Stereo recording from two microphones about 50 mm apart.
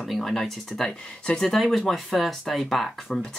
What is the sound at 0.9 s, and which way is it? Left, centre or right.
Speech, left.